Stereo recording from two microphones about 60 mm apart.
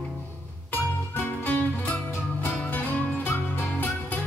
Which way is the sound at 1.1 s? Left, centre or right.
Left.